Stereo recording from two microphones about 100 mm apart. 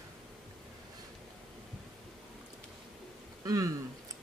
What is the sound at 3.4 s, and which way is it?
Speech, 35° right (ahead or behind).